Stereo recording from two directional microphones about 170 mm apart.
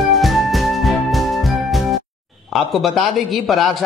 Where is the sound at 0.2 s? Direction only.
Centre (ahead or behind).